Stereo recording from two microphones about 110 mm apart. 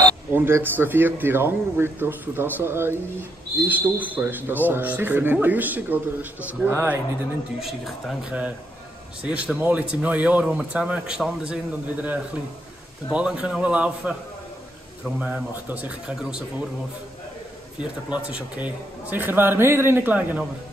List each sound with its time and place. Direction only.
0.3 s speech: 20° right (ahead or behind)
7.6 s speech: centre (ahead or behind)
17.7 s speech: 10° right (ahead or behind)